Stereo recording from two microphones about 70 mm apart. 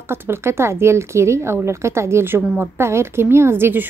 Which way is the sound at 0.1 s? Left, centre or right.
Right.